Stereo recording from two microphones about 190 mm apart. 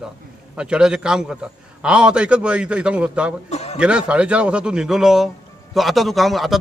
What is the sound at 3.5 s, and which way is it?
Speech, 35° left (ahead or behind).